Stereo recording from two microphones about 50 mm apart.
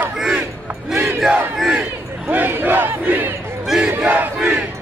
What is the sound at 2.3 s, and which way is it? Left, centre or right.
Battle cry, right.